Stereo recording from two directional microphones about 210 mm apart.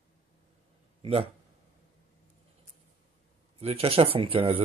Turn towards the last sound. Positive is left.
turn(degrees=-25)  # may be behind; listen again after turning